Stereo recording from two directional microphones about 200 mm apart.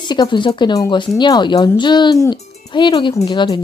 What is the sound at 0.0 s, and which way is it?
Speech, 20° left (ahead or behind).